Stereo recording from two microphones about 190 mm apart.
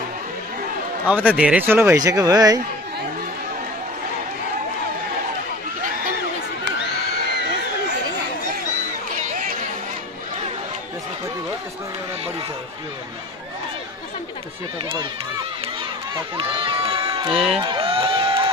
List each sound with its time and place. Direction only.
1.3 s speech: 5° right (ahead or behind)
9.2 s chatter: 45° right (ahead or behind)
16.3 s speech: 25° right (ahead or behind)
17.3 s speech: centre (ahead or behind)
17.6 s a sound: 25° right (ahead or behind)